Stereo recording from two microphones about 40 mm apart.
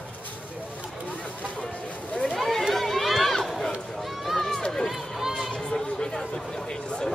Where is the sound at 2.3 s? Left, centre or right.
Centre.